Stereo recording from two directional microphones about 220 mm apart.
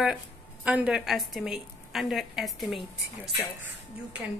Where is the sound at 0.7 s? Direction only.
5° right (ahead or behind).